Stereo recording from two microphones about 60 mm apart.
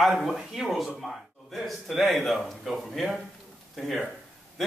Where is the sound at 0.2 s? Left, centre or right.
Centre.